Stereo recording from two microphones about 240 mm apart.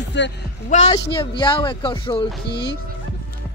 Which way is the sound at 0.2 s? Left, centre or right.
Left.